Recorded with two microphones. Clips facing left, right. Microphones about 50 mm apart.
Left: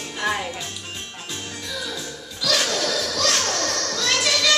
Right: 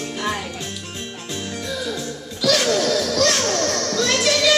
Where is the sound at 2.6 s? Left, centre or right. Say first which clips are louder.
Right 4 dB; centre.